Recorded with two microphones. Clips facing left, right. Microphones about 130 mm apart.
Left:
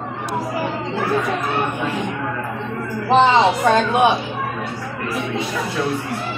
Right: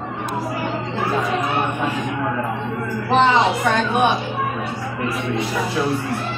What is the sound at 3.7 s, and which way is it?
Speech, 25° left (ahead or behind).